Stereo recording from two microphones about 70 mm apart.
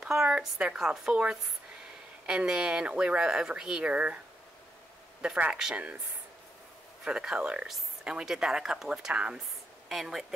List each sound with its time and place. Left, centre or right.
0.0 s speech: centre
5.2 s speech: centre
7.1 s speech: centre
9.8 s speech: centre